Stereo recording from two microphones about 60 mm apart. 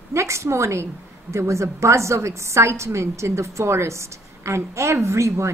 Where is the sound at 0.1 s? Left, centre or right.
Right.